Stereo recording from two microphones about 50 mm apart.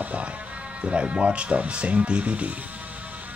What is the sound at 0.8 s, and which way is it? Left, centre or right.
Speech, right.